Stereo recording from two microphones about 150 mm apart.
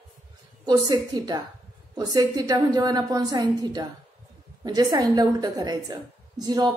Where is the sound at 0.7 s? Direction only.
25° right (ahead or behind).